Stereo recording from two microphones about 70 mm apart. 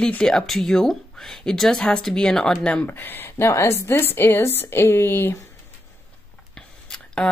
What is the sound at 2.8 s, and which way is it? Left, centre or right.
Speech, left.